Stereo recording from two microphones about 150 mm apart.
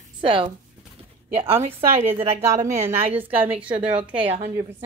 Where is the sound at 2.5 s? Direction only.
20° right (ahead or behind).